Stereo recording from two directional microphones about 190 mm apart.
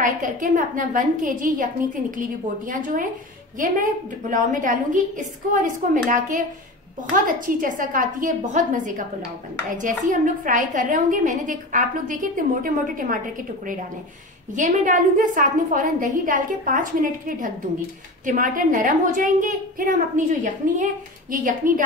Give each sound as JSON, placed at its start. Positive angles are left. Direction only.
{"t": 0.0, "sound": "a woman's voice", "side_deg": -45}
{"t": 14.5, "sound": "a woman's voice", "side_deg": -40}